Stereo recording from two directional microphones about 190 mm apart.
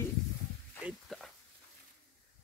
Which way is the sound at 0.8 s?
Centre (ahead or behind).